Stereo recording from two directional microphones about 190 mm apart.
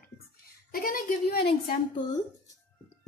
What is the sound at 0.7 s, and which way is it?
Child singing, 50° left (ahead or behind).